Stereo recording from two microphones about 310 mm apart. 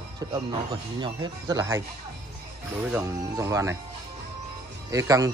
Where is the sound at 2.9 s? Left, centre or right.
Centre.